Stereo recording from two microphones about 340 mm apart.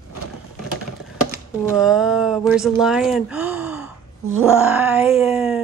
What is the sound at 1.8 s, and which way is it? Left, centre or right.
Speech, centre.